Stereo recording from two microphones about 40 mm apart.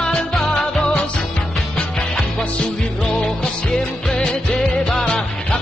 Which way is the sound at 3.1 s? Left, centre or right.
Left.